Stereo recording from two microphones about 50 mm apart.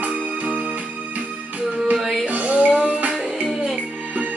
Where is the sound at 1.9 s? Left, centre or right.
Centre.